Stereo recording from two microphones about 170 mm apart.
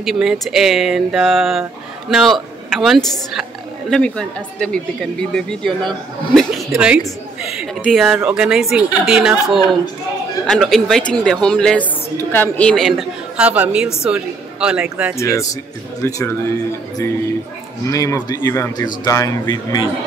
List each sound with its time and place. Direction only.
0.0 s a woman's voice: centre (ahead or behind)
15.1 s speech: 15° left (ahead or behind)
17.8 s speech: 20° left (ahead or behind)